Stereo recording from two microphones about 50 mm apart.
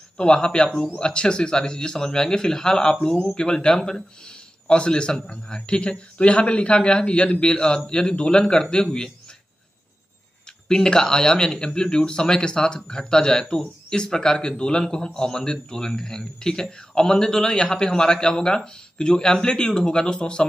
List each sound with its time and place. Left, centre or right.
0.2 s a man's voice: centre
10.7 s speech: centre